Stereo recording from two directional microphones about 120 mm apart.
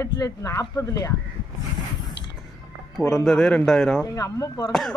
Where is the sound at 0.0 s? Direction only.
25° left (ahead or behind).